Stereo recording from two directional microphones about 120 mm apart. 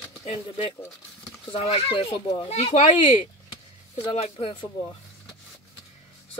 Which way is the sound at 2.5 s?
70° left (ahead or behind).